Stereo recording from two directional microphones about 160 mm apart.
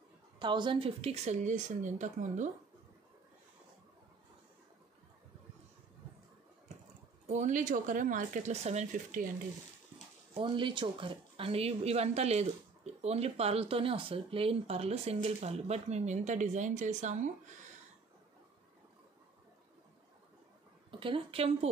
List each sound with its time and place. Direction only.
0.4 s a woman's voice: 30° right (ahead or behind); by 2.5 s 50° right (ahead or behind)
7.2 s a woman's voice: 50° right (ahead or behind)
10.3 s a woman's voice: 30° right (ahead or behind); by 17.3 s 50° right (ahead or behind)
21.0 s a woman's voice: 35° right (ahead or behind)